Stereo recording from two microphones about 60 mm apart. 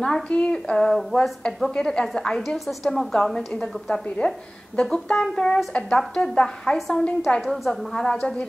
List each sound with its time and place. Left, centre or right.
0.0 s a woman's voice: centre